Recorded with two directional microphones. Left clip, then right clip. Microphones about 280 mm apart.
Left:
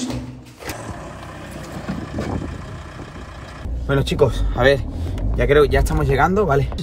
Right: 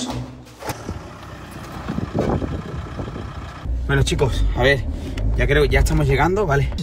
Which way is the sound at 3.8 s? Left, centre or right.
Left.